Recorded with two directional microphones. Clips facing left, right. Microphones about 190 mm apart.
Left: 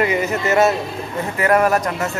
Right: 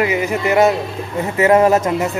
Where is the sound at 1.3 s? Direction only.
25° right (ahead or behind).